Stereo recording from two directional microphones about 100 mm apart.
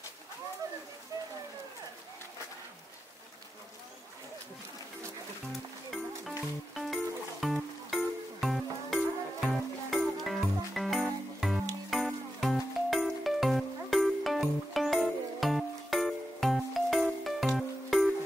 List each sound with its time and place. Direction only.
5.5 s music: centre (ahead or behind)